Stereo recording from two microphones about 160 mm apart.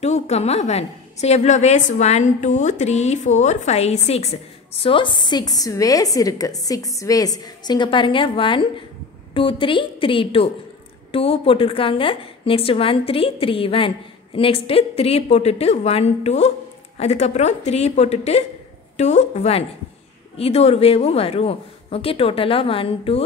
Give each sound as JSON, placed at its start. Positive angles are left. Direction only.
{"t": 0.0, "sound": "a woman's voice", "side_deg": 45}